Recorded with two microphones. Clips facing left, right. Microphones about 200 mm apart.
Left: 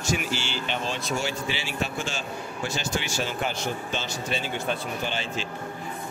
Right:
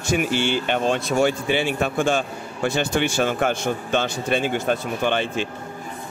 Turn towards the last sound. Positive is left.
turn(degrees=-55)  # may be behind; listen again after turning